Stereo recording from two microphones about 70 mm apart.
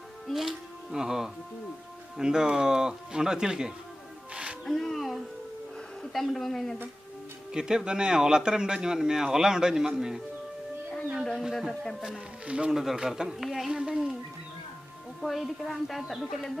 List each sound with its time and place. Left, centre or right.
0.3 s speech: centre
4.3 s music: centre
4.6 s music: centre
6.1 s speech: centre
7.5 s speech: centre
11.4 s speech: centre
15.2 s speech: centre